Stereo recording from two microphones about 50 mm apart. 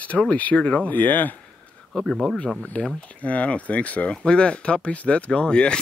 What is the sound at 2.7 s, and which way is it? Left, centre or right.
Speech, left.